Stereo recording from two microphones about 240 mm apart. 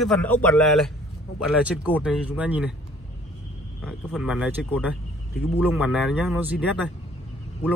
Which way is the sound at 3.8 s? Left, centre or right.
Centre.